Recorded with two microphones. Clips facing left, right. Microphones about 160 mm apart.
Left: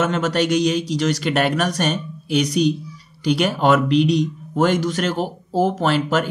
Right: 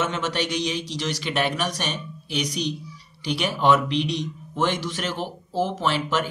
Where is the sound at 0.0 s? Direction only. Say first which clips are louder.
Left 6 dB; 45° left (ahead or behind).